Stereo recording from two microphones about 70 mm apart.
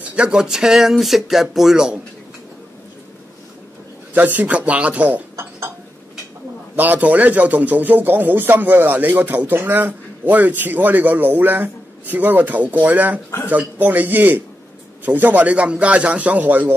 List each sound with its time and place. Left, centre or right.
0.0 s speech: centre
4.1 s speech: right
5.3 s a sound: right
6.8 s speech: right